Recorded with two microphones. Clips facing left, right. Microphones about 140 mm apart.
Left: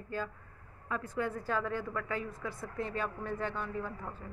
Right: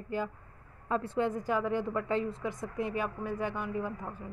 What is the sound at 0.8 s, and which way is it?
A woman's voice, 30° right (ahead or behind).